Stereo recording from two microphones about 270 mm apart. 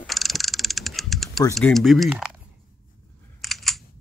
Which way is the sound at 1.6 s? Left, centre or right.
Centre.